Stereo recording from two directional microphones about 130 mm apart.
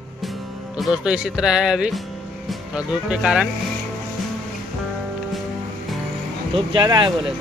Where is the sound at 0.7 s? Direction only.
5° right (ahead or behind).